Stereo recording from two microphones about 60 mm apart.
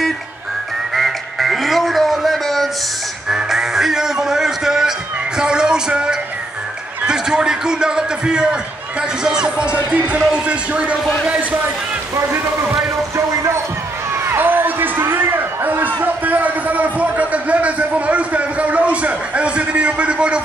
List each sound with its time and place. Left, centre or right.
0.9 s music: centre
3.3 s music: centre
7.1 s a sound: centre
9.2 s speech: centre
14.3 s a man's voice: right; by 20.4 s centre